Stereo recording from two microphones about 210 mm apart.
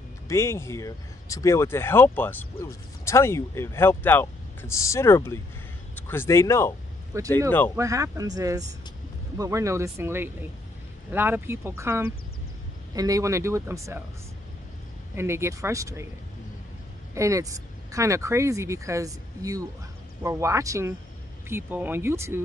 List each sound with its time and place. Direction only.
0.3 s speech: 10° left (ahead or behind)
7.1 s speech: 15° right (ahead or behind)
15.1 s speech: 10° right (ahead or behind)
17.1 s speech: 15° right (ahead or behind)